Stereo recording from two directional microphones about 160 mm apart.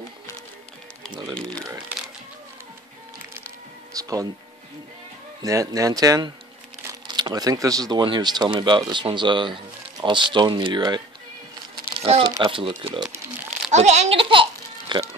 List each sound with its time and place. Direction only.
1.1 s music: 30° right (ahead or behind)
4.0 s speech: 20° right (ahead or behind)
5.4 s speech: 20° right (ahead or behind)
12.1 s crumpling: 40° right (ahead or behind)
12.4 s speech: 30° right (ahead or behind)
13.7 s music: 45° right (ahead or behind)